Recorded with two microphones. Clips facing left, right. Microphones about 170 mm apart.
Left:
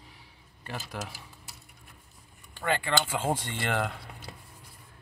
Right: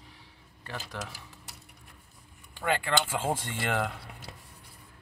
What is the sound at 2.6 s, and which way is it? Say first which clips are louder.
Speech: even; 5° right (ahead or behind).